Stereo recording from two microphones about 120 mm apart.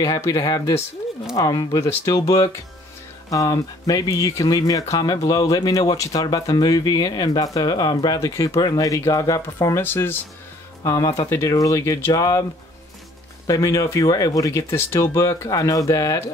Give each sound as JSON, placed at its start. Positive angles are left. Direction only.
{"t": 0.0, "sound": "speech", "side_deg": 30}
{"t": 9.8, "sound": "speech", "side_deg": 20}
{"t": 10.8, "sound": "speech", "side_deg": 30}
{"t": 13.5, "sound": "speech", "side_deg": 25}